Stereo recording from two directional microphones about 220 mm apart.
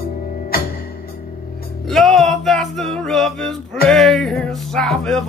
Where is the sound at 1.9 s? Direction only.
Centre (ahead or behind).